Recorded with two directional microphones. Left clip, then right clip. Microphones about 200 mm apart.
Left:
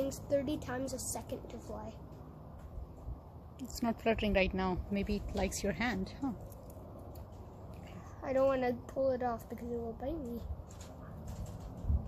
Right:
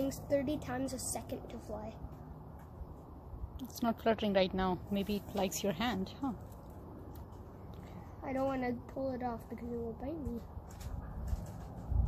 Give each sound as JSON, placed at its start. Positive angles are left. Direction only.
{"t": 0.0, "sound": "a woman's voice", "side_deg": 10}
{"t": 3.8, "sound": "speech", "side_deg": 5}
{"t": 8.2, "sound": "speech", "side_deg": 30}